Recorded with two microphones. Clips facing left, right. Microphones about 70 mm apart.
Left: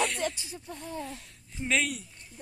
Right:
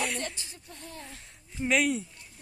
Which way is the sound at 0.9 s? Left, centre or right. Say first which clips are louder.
Left 9 dB; left.